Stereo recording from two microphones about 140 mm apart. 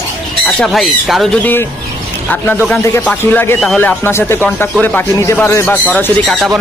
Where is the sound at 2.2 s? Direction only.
15° left (ahead or behind).